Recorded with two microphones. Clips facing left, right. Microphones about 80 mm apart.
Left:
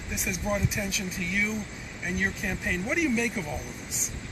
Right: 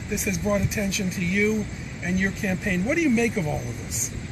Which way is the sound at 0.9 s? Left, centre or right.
Centre.